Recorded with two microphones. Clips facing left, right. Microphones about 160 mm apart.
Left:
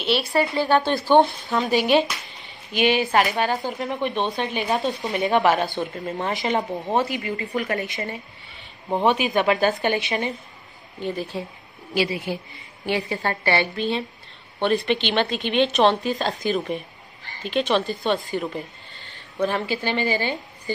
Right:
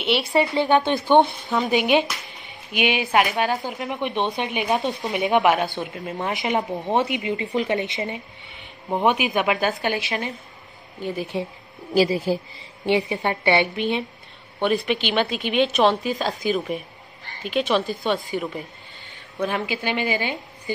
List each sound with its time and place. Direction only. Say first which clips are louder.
0.0 s a woman's voice: right 1 dB; 20° right (ahead or behind); by 3.6 s centre (ahead or behind)
3.9 s a woman's voice: right 1 dB; 20° right (ahead or behind)
6.9 s a woman's voice: right 2 dB; 20° right (ahead or behind)
11.9 s a woman's voice: right 5 dB; 40° right (ahead or behind)
12.8 s a woman's voice: right 3 dB; 20° right (ahead or behind)